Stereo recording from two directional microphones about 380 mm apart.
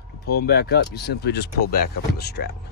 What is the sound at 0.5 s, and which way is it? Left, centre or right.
Speech, left.